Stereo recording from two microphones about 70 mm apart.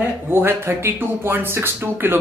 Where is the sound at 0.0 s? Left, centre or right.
Right.